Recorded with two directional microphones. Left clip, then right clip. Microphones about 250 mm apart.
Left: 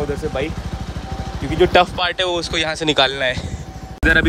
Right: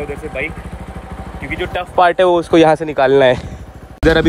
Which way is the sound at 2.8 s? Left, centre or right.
Centre.